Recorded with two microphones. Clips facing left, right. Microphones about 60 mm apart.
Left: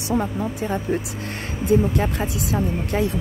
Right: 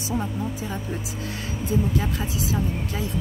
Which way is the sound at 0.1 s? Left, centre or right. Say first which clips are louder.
Left 5 dB; left.